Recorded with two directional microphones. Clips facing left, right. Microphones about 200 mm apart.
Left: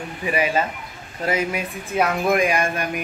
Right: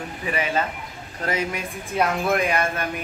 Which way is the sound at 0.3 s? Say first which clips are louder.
Left 3 dB; 10° left (ahead or behind).